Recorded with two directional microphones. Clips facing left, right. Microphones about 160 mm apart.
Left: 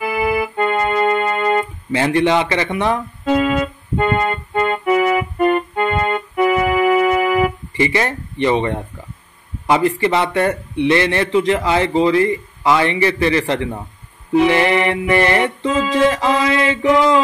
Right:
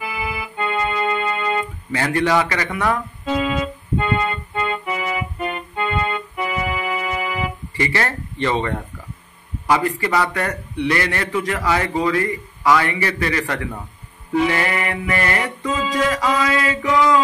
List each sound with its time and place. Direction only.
0.0 s keyboard: 55° left (ahead or behind)
1.9 s a man's voice: 20° left (ahead or behind)
3.3 s music: 55° left (ahead or behind)
7.7 s a man's voice: 20° left (ahead or behind)